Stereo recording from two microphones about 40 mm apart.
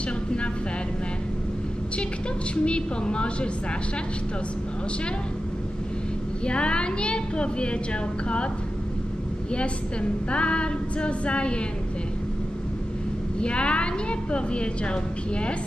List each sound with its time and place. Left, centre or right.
2.5 s a woman's voice: left
6.4 s a woman's voice: left
10.3 s a woman's voice: left
13.4 s a woman's voice: left